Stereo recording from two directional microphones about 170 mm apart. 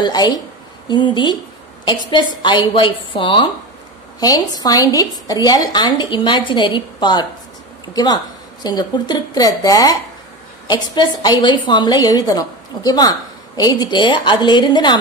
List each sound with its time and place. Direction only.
0.0 s a woman's voice: 25° left (ahead or behind)